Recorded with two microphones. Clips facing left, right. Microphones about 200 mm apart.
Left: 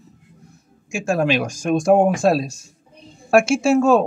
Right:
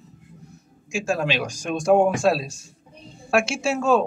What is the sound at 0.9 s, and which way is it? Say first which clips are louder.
A man's voice: left 5 dB; 50° left (ahead or behind).